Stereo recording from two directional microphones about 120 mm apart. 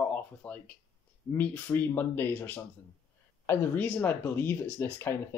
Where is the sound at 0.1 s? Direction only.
10° left (ahead or behind).